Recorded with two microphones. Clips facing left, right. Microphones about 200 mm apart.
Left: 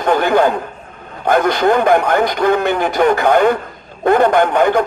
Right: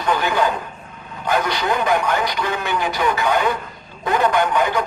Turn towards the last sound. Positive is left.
turn(degrees=55)  # may be behind; listen again after turning